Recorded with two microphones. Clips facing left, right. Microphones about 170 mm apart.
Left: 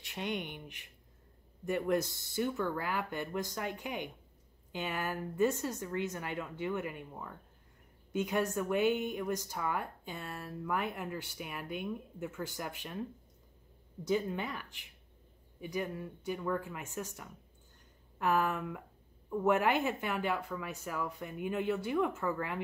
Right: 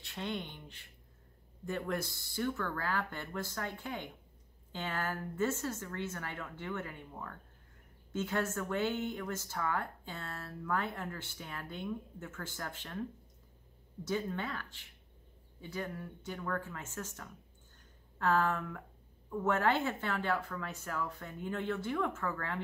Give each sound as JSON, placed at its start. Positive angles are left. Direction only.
{"t": 0.0, "sound": "speech", "side_deg": 15}
{"t": 14.0, "sound": "speech", "side_deg": 15}